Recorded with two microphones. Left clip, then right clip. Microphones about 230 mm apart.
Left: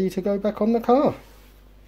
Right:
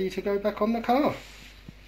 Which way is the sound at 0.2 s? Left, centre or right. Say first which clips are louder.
Left 1 dB; left.